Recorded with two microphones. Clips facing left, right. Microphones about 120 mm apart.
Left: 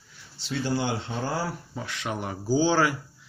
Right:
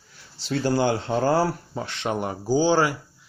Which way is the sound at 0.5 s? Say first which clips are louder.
Right 6 dB; 45° right (ahead or behind).